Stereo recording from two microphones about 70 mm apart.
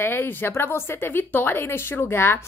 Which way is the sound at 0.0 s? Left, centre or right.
Left.